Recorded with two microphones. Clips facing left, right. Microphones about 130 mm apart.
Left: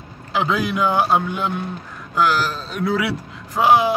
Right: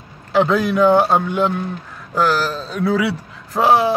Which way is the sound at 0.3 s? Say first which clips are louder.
Right 5 dB; centre (ahead or behind).